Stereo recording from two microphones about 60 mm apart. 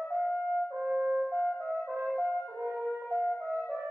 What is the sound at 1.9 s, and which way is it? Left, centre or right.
Brass instrument, right.